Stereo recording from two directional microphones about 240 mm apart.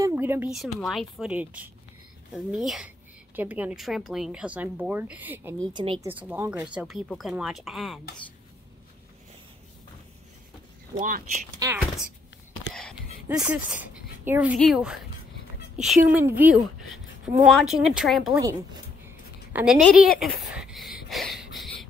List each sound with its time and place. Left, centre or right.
0.0 s speech: centre
5.7 s a woman's voice: centre
6.0 s speech: centre
11.0 s speech: right
12.7 s a sound: centre
13.7 s speech: centre
18.4 s a woman's voice: centre
20.5 s a sound: centre